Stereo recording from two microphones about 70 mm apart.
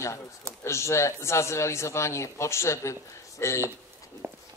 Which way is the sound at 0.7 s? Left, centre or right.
Left.